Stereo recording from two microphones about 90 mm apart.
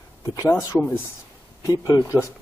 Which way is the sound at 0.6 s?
40° left (ahead or behind).